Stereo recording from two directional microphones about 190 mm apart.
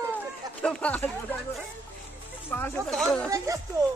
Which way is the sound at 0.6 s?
5° left (ahead or behind).